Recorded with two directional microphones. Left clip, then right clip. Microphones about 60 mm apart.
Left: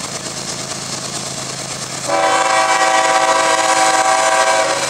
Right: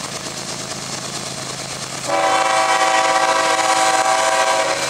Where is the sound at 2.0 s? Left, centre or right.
Centre.